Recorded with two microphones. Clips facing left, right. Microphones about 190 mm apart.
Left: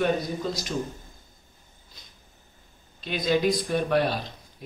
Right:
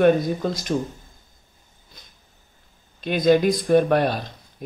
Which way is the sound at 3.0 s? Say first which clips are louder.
Right 6 dB; 50° right (ahead or behind).